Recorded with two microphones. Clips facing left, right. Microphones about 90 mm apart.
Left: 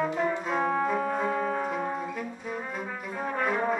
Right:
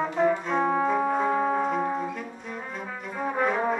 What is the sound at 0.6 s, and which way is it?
Brass instrument, 10° right (ahead or behind).